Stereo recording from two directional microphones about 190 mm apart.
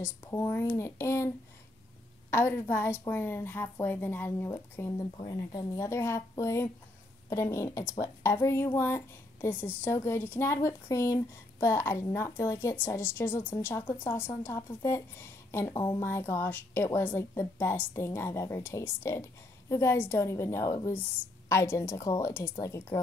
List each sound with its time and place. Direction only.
0.0 s a woman's voice: 15° left (ahead or behind)
2.3 s a woman's voice: 15° left (ahead or behind)